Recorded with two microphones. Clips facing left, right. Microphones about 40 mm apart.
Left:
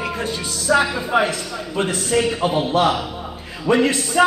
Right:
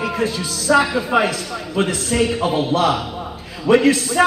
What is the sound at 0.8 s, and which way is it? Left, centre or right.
A man's voice, centre.